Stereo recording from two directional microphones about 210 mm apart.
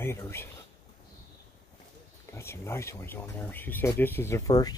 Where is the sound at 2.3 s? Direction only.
10° left (ahead or behind).